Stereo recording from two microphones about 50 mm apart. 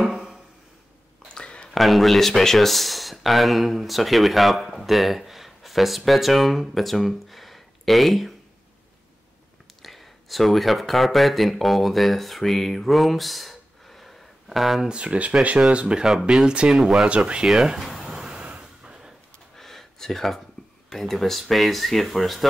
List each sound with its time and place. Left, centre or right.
1.3 s a sound: left
1.7 s speech: centre
9.8 s speech: centre
14.9 s speech: right
16.1 s speech: centre
17.5 s speech: centre
18.0 s vehicle: centre
18.4 s a sound: right
19.5 s a sound: centre
20.9 s speech: centre